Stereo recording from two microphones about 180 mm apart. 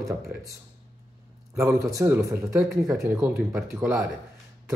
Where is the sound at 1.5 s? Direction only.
15° right (ahead or behind).